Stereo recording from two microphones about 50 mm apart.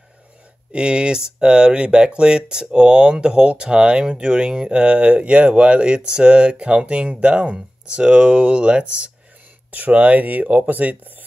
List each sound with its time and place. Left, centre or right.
0.7 s speech: centre
9.7 s speech: right